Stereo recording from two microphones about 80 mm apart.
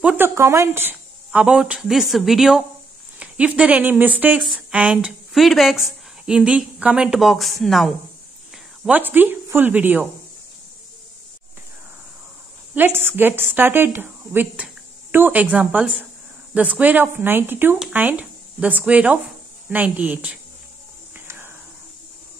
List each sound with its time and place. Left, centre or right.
0.2 s speech: right
1.3 s a sound: centre
1.8 s a woman's voice: centre; by 4.4 s right
4.4 s a sound: centre
4.9 s a woman's voice: centre
8.8 s a woman's voice: right
12.7 s a woman's voice: right